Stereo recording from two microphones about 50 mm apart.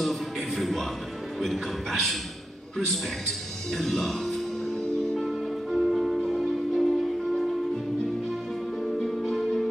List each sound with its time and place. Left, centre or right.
0.0 s a sound: centre
1.4 s a man's voice: centre
2.8 s music: centre
8.8 s music: centre